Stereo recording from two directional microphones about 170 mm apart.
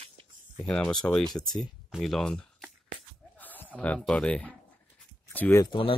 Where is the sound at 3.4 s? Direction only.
10° left (ahead or behind).